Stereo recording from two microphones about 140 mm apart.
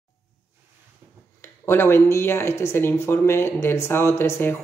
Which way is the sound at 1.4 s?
15° left (ahead or behind).